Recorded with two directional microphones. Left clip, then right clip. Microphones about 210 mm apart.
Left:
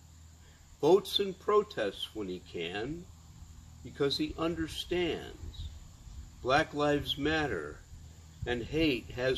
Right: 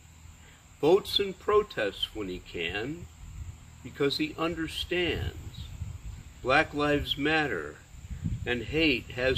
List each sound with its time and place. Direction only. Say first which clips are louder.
0.7 s speech: right 2 dB; 10° left (ahead or behind)
3.9 s speech: right 3 dB; 5° left (ahead or behind)
6.4 s speech: right 3 dB; 5° left (ahead or behind)